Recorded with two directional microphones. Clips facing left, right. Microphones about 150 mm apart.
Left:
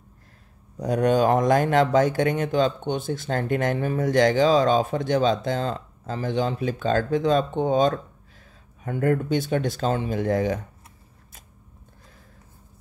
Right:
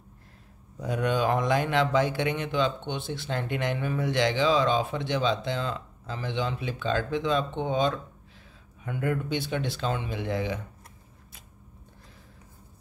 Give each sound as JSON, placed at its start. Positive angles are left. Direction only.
{"t": 0.7, "sound": "speech", "side_deg": 40}